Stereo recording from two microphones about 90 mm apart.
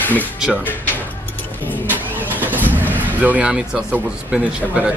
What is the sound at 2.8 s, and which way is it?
Vehicle, 20° left (ahead or behind).